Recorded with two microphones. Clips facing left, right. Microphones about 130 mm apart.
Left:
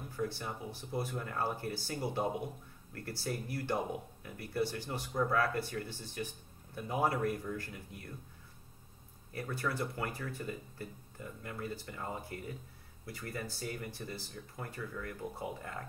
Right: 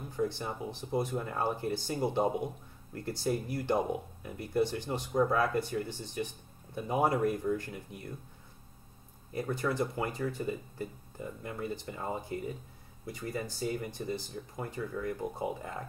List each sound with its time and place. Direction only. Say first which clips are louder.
0.1 s speech: right 5 dB; 20° right (ahead or behind)
9.3 s speech: right 5 dB; 20° right (ahead or behind)